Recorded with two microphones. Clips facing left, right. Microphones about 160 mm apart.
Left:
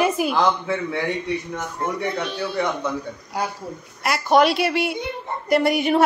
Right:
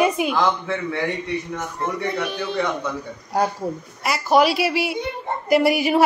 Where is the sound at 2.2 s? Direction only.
15° right (ahead or behind).